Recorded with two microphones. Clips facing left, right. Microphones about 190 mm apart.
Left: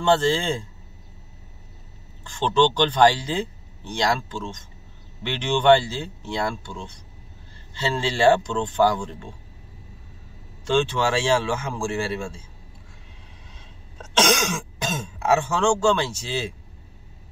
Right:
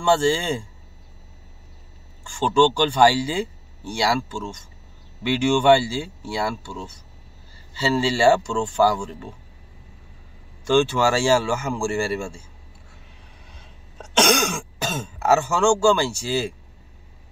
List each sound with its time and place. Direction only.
0.0 s speech: 10° right (ahead or behind)
2.2 s speech: 10° right (ahead or behind)
10.6 s speech: 10° right (ahead or behind)
14.8 s speech: 5° right (ahead or behind)